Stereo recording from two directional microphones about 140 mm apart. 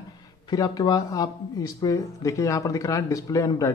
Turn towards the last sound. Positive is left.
turn(degrees=25)  # may be behind; listen again after turning